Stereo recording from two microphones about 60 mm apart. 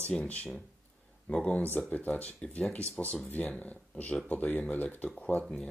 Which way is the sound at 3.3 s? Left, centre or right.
Left.